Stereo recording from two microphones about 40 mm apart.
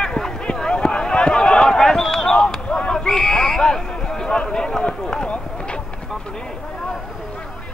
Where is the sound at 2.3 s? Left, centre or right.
Left.